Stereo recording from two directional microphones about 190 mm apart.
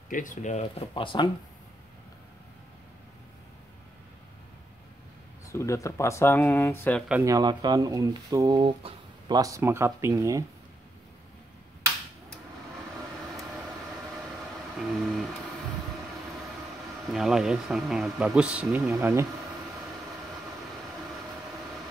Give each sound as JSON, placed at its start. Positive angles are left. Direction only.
{"t": 0.1, "sound": "speech", "side_deg": 45}
{"t": 5.5, "sound": "speech", "side_deg": 15}
{"t": 7.1, "sound": "speech", "side_deg": -15}
{"t": 14.8, "sound": "a sound", "side_deg": 0}
{"t": 17.1, "sound": "speech", "side_deg": 0}